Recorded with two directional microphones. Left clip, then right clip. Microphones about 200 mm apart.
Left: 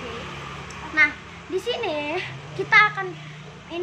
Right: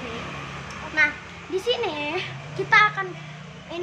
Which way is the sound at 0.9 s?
10° left (ahead or behind).